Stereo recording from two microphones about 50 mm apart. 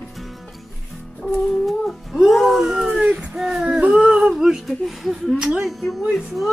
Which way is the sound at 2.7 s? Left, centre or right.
Right.